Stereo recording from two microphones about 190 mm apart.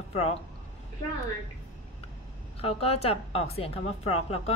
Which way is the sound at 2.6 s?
30° left (ahead or behind).